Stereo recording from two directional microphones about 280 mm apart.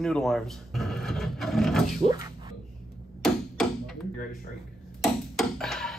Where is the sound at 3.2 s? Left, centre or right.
Centre.